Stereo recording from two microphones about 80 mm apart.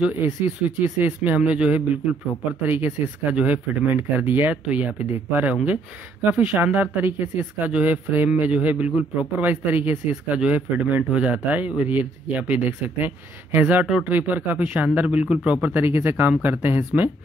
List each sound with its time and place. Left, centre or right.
0.7 s a man's voice: right